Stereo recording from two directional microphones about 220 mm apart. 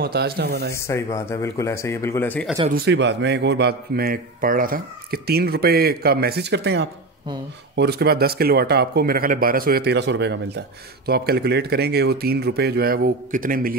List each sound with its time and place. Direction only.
0.0 s a man's voice: 45° right (ahead or behind)
0.7 s speech: 10° left (ahead or behind)
2.7 s a man's voice: 50° right (ahead or behind)